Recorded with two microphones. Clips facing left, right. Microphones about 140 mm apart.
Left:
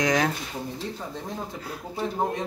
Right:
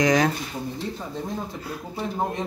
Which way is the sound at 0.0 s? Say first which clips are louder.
Right 4 dB; centre (ahead or behind).